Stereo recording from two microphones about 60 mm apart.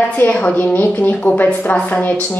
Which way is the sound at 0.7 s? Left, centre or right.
Left.